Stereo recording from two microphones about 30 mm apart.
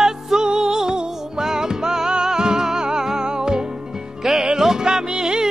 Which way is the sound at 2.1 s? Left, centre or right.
Right.